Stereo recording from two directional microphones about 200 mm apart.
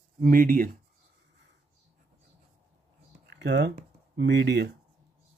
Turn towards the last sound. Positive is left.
turn(degrees=-60)  # may be behind; listen again after turning